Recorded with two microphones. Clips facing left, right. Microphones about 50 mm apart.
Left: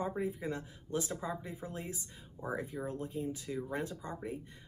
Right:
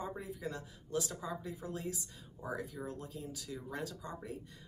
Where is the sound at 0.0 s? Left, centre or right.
Left.